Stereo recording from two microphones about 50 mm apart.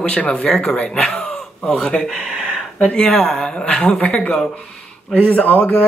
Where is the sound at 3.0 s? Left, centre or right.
Left.